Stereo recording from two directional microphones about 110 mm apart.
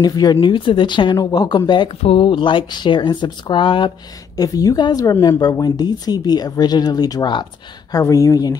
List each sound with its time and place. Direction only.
0.0 s speech: 35° left (ahead or behind)
1.1 s speech: 35° left (ahead or behind)
2.0 s speech: 55° left (ahead or behind)
4.4 s speech: 35° left (ahead or behind)